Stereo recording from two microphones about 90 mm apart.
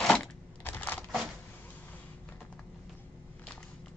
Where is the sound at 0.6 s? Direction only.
20° left (ahead or behind).